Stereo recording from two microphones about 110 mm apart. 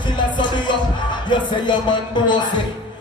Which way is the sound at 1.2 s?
45° left (ahead or behind).